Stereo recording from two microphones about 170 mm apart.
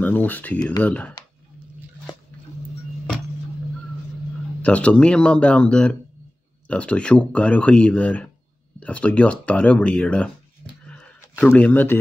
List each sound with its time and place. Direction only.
0.0 s speech: 10° left (ahead or behind)
4.6 s speech: 5° left (ahead or behind)
10.9 s a sound: 10° left (ahead or behind)